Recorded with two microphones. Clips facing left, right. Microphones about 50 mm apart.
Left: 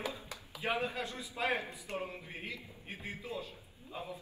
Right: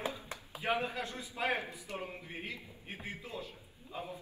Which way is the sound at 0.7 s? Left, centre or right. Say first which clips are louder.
Right 1 dB; right.